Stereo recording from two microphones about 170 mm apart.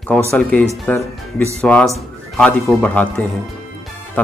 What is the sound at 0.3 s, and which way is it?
Speech, 10° left (ahead or behind).